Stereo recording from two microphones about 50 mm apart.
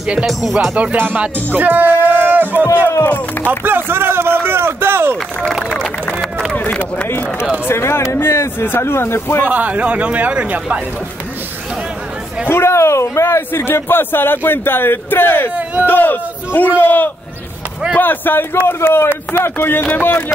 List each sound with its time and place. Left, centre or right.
0.3 s music: centre
1.1 s speech: right
3.0 s speech: left
3.6 s a sound: right
6.5 s a sound: left
7.1 s speech: left
8.2 s speech: left
9.4 s speech: right
12.4 s speech: left
13.5 s speech: left
15.5 s speech: right
15.9 s a man's voice: left
18.7 s speech: left
19.4 s speech: left